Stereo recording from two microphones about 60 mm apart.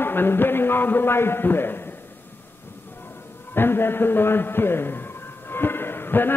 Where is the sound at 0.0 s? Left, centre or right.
Left.